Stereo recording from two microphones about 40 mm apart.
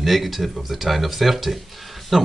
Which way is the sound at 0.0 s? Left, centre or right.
Centre.